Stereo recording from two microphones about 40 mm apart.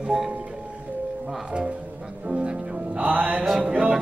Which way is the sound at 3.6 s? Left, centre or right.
Right.